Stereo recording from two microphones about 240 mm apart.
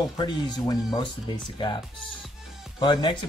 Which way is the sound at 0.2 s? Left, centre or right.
Centre.